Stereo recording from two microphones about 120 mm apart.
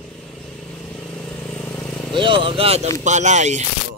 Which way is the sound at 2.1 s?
45° right (ahead or behind).